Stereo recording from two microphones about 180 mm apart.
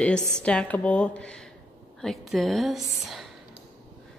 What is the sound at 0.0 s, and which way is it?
Speech, 5° left (ahead or behind).